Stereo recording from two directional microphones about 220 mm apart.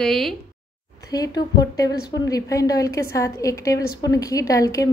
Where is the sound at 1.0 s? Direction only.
15° left (ahead or behind).